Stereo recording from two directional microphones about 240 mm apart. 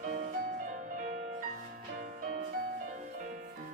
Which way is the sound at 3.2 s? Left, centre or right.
Right.